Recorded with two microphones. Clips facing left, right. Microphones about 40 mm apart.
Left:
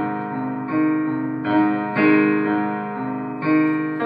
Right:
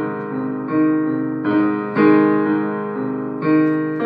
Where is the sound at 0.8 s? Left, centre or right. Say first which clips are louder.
Right 3 dB; centre.